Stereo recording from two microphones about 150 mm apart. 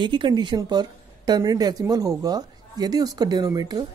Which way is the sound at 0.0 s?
30° right (ahead or behind).